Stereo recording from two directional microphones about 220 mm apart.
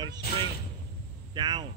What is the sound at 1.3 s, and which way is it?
Speech, 20° right (ahead or behind).